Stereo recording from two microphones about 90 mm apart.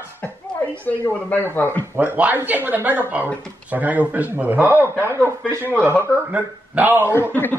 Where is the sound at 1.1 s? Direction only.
20° left (ahead or behind).